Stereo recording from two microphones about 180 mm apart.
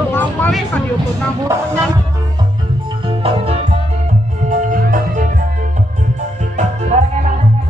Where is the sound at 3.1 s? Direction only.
30° right (ahead or behind).